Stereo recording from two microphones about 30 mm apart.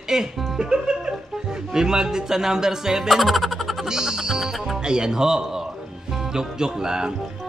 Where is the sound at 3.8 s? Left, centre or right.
Right.